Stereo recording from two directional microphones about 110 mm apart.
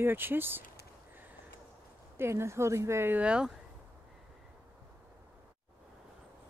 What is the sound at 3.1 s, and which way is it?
Speech, 10° right (ahead or behind).